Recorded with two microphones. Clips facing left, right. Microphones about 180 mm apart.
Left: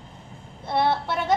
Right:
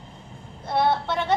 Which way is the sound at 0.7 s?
5° left (ahead or behind).